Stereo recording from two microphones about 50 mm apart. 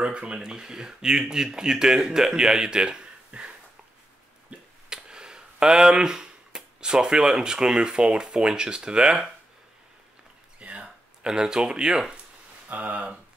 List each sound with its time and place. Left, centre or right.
0.0 s speech: right
10.6 s a sound: right
11.2 s speech: centre
12.6 s speech: right